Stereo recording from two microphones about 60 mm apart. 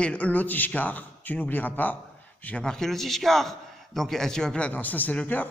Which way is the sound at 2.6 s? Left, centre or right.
Centre.